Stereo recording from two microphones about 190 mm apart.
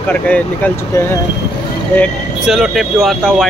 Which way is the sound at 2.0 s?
Centre (ahead or behind).